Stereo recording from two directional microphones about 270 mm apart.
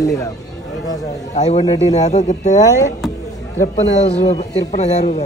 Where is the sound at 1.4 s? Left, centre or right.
Left.